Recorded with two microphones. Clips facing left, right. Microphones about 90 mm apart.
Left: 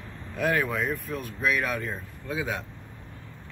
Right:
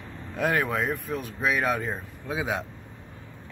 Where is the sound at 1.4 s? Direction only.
25° right (ahead or behind).